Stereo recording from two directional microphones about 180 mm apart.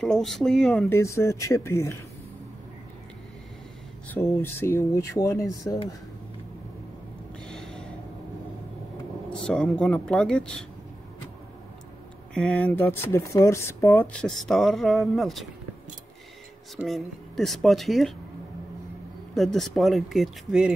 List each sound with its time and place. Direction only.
0.0 s speech: centre (ahead or behind)
0.8 s speech: 15° left (ahead or behind)
4.1 s speech: 10° left (ahead or behind)
7.4 s a sound: 5° left (ahead or behind)
9.3 s speech: 5° left (ahead or behind)
12.4 s speech: 5° left (ahead or behind)
16.7 s speech: centre (ahead or behind)
19.3 s speech: centre (ahead or behind)